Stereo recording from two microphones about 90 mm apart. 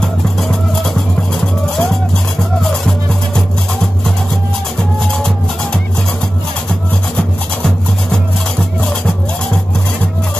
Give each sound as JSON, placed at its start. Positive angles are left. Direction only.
{"t": 0.0, "sound": "music", "side_deg": 5}